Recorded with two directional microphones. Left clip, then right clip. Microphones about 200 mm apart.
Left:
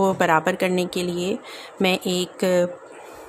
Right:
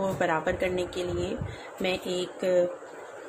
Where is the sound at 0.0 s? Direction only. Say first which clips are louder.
Left 8 dB; 40° left (ahead or behind).